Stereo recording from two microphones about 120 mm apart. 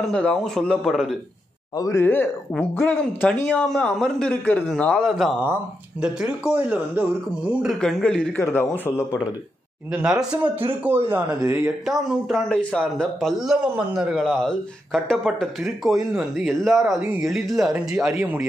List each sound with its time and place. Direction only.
0.1 s speech: 10° left (ahead or behind)
1.8 s a man's voice: 25° left (ahead or behind); by 7.7 s 10° right (ahead or behind)
7.8 s a man's voice: 5° left (ahead or behind)
9.9 s speech: 5° right (ahead or behind)
11.8 s speech: centre (ahead or behind)
13.5 s speech: 10° right (ahead or behind)
14.2 s speech: 5° left (ahead or behind)